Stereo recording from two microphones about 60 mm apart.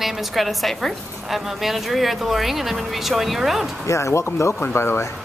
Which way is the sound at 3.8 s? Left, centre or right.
Left.